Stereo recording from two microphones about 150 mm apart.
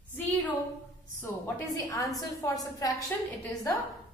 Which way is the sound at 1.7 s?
25° left (ahead or behind).